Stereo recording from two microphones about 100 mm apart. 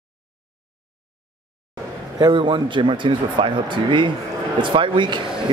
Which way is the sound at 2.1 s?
50° right (ahead or behind).